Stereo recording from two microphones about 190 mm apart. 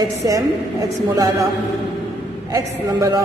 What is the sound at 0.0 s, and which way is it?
A woman's voice, 15° right (ahead or behind).